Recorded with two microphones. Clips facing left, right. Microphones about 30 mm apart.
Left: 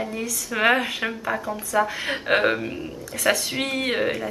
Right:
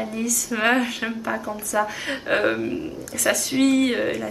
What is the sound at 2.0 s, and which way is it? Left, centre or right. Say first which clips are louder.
Speech: left 1 dB; left.